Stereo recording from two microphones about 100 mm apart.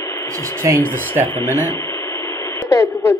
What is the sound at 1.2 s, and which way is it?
Radio, 25° left (ahead or behind).